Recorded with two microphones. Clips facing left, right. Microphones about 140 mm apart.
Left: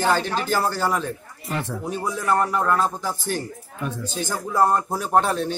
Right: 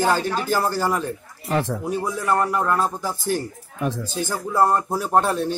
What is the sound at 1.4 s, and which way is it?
Speech, 85° right.